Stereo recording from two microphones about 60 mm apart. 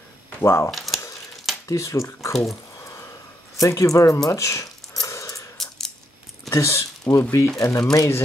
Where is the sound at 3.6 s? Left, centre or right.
Left.